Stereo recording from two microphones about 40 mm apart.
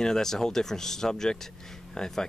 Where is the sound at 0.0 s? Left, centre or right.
Centre.